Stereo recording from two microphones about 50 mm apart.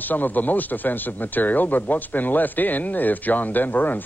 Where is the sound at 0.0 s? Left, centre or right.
Left.